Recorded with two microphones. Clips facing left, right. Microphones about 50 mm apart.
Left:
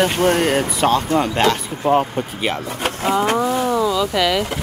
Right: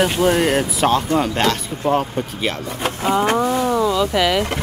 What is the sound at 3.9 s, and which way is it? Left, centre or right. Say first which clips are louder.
Speech: right 1 dB; centre.